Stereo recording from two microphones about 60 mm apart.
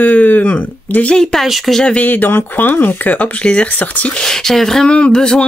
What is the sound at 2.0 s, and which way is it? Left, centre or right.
Speech, left.